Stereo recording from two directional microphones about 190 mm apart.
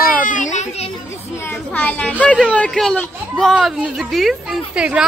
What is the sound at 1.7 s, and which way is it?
A woman's voice, 10° left (ahead or behind).